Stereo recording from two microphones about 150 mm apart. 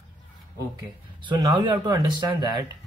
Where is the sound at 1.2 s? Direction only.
30° right (ahead or behind).